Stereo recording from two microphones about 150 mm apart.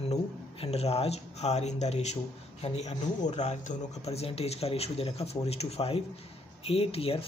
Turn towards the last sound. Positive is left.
turn(degrees=40)  # may be behind; listen again after turning